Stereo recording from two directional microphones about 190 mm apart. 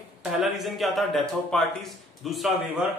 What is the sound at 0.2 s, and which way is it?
Speech, centre (ahead or behind).